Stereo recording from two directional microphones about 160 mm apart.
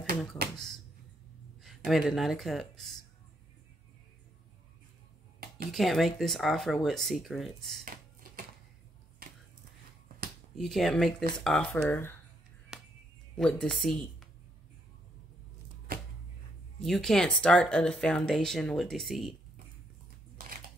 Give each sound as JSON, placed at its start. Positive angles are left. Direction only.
{"t": 1.9, "sound": "speech", "side_deg": 0}
{"t": 5.7, "sound": "speech", "side_deg": 0}
{"t": 9.2, "sound": "a sound", "side_deg": -65}
{"t": 10.6, "sound": "speech", "side_deg": 0}
{"t": 12.7, "sound": "music", "side_deg": 0}
{"t": 13.4, "sound": "a woman's voice", "side_deg": 5}
{"t": 16.8, "sound": "speech", "side_deg": 0}